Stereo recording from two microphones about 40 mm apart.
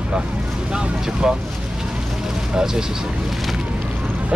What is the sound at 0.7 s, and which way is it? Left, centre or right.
Speech, right.